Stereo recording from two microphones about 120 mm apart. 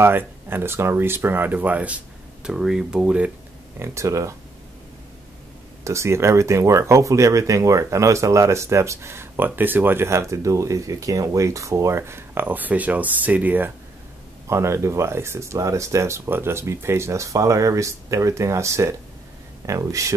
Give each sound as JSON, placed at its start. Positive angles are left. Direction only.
{"t": 0.0, "sound": "speech", "side_deg": -20}
{"t": 3.8, "sound": "speech", "side_deg": -25}
{"t": 5.9, "sound": "speech", "side_deg": -25}